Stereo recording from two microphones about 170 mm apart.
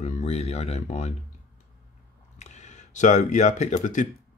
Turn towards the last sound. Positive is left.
turn(degrees=45)  # may be behind; listen again after turning